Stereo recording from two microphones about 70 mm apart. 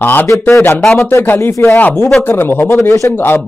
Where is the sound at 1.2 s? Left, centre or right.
Left.